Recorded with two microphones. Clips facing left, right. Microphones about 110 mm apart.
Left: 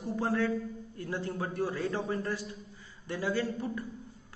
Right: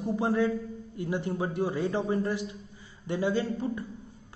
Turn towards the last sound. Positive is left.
turn(degrees=-20)  # may be behind; listen again after turning